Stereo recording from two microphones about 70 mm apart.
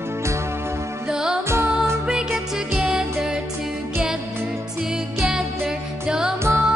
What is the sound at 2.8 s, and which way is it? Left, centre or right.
Music, centre.